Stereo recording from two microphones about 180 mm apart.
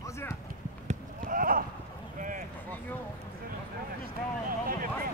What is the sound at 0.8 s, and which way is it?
Clip-clop, 50° right (ahead or behind).